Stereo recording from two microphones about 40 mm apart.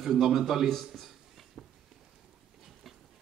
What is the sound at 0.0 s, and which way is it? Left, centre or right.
Speech, centre.